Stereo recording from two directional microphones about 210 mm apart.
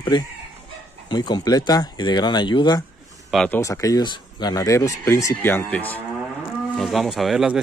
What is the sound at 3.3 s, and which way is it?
Speech, centre (ahead or behind).